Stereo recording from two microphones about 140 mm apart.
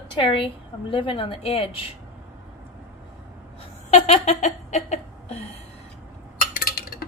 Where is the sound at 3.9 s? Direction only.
50° left (ahead or behind).